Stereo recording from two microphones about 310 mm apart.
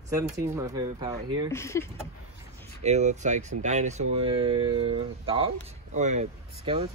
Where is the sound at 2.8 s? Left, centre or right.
Right.